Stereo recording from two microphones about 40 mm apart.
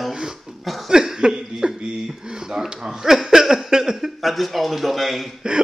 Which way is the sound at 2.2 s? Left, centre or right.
Centre.